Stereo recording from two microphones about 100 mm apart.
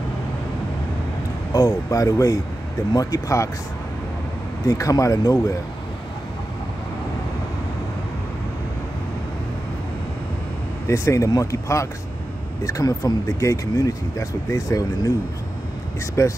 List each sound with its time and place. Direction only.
1.5 s speech: 35° left (ahead or behind)
4.6 s speech: 35° left (ahead or behind)
10.9 s speech: 30° left (ahead or behind)
16.2 s speech: 30° left (ahead or behind)